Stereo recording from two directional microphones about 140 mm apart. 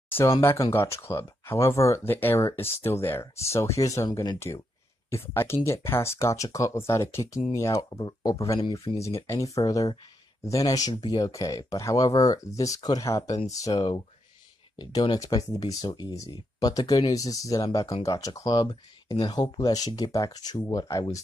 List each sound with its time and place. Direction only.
0.4 s speech: 20° left (ahead or behind)